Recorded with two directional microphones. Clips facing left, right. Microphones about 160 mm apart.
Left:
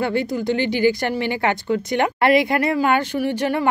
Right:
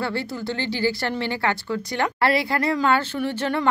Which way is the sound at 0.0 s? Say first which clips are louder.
Left 6 dB; 15° left (ahead or behind).